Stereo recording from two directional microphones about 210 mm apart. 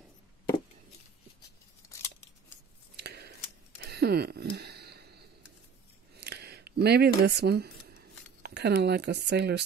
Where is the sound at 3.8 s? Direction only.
50° right (ahead or behind).